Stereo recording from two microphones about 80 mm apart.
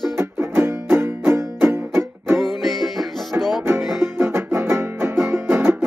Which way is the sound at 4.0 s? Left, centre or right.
Right.